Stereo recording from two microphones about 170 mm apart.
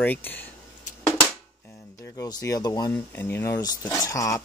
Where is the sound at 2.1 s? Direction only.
20° left (ahead or behind).